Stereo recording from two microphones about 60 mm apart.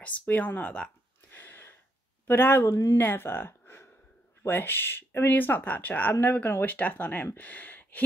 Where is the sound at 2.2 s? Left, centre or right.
Left.